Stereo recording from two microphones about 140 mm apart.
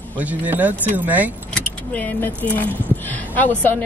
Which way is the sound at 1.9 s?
10° left (ahead or behind).